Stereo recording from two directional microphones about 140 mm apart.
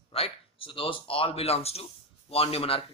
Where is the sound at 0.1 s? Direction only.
40° left (ahead or behind).